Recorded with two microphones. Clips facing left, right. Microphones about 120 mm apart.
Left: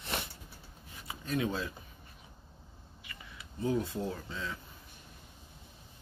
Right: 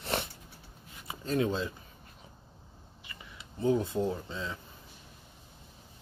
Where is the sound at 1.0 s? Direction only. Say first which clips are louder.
Right 4 dB; 30° right (ahead or behind).